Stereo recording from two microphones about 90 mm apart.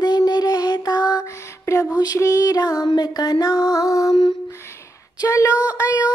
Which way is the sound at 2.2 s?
40° left (ahead or behind).